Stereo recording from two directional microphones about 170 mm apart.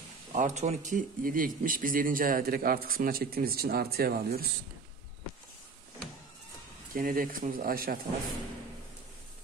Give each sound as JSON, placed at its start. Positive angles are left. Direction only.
{"t": 0.3, "sound": "speech", "side_deg": -45}
{"t": 6.9, "sound": "speech", "side_deg": -55}